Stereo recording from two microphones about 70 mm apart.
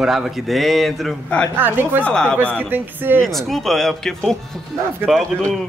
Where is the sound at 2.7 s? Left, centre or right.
Right.